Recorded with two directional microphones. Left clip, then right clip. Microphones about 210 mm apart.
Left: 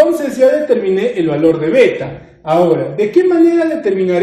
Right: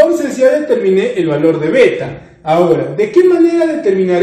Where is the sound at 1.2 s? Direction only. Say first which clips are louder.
Even; 25° left (ahead or behind).